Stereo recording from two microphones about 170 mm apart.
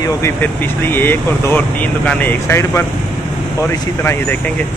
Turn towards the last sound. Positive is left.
turn(degrees=10)  # may be behind; listen again after turning